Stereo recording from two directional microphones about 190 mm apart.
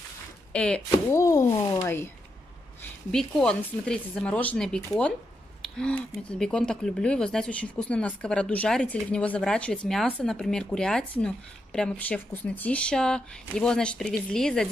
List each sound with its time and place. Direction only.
0.5 s speech: 5° left (ahead or behind)
2.8 s speech: 5° left (ahead or behind)